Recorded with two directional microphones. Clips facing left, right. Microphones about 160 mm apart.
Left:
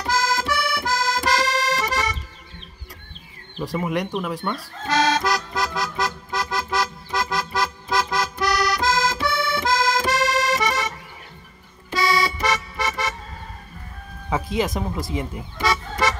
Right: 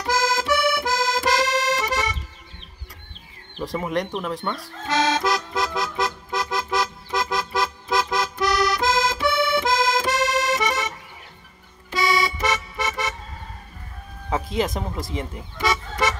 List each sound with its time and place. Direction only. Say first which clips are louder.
0.0 s accordion: even; 20° right (ahead or behind)
3.6 s speech: left 1 dB; 5° left (ahead or behind)
4.8 s music: left 1 dB; 20° right (ahead or behind)
14.5 s speech: left 2 dB; 5° left (ahead or behind)
15.6 s a sound: left 1 dB; 20° right (ahead or behind)